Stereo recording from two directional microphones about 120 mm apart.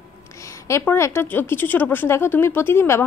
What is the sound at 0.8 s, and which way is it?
Speech, 20° left (ahead or behind).